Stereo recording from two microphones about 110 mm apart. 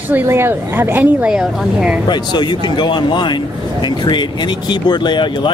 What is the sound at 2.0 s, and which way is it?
Speech, 45° left (ahead or behind).